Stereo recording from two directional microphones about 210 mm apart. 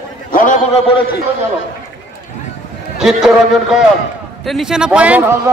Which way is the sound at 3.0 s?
Centre (ahead or behind).